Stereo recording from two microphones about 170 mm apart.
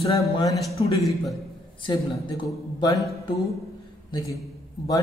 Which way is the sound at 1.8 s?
25° left (ahead or behind).